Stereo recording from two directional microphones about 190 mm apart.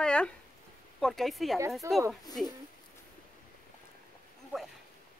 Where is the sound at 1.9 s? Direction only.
15° right (ahead or behind).